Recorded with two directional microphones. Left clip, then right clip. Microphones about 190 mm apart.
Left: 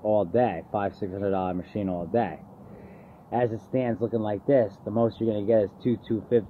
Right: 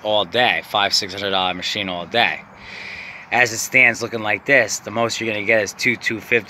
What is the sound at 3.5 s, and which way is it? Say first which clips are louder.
Speech: right 14 dB; 15° right (ahead or behind).